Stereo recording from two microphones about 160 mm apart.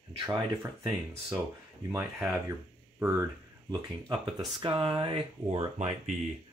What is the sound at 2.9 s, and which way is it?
Speech, 15° right (ahead or behind).